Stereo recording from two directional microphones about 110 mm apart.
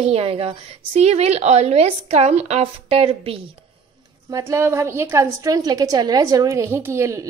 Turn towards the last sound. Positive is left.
turn(degrees=-25)  # may be behind; listen again after turning